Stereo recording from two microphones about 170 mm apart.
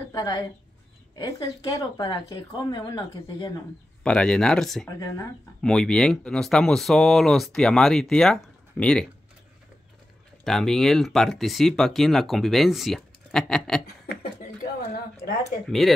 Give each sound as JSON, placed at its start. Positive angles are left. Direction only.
{"t": 0.1, "sound": "a woman's voice", "side_deg": 25}
{"t": 4.0, "sound": "speech", "side_deg": 5}
{"t": 4.8, "sound": "speech", "side_deg": 20}
{"t": 5.6, "sound": "speech", "side_deg": 5}
{"t": 10.4, "sound": "speech", "side_deg": 0}